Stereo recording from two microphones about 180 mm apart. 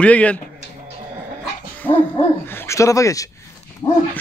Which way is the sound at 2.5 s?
15° left (ahead or behind).